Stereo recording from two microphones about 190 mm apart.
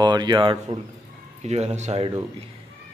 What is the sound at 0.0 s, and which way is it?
Speech, 20° right (ahead or behind).